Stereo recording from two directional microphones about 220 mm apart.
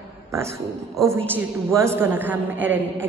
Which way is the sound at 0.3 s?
10° right (ahead or behind).